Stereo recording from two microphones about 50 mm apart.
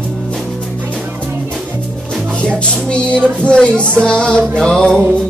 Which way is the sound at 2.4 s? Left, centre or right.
Centre.